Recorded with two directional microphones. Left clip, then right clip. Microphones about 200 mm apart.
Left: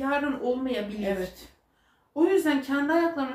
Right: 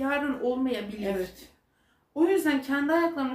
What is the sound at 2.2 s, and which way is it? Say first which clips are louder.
A woman's voice: left 1 dB; 25° right (ahead or behind).